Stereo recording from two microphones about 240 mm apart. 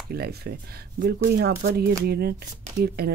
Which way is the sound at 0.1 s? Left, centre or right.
Right.